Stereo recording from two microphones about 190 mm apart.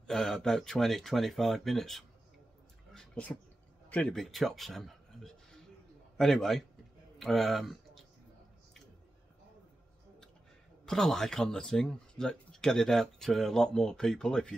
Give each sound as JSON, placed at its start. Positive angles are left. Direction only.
{"t": 0.0, "sound": "speech", "side_deg": 5}
{"t": 2.9, "sound": "a sound", "side_deg": 5}
{"t": 3.9, "sound": "speech", "side_deg": 5}
{"t": 10.9, "sound": "speech", "side_deg": 0}